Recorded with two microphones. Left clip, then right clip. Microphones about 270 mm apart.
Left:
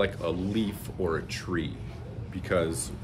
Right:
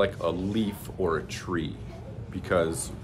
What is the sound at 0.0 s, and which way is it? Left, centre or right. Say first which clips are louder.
Speech: right 2 dB; centre.